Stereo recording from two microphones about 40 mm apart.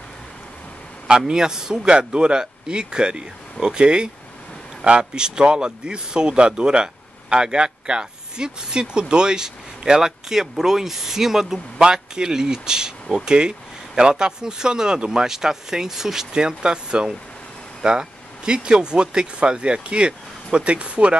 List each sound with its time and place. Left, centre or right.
1.0 s speech: centre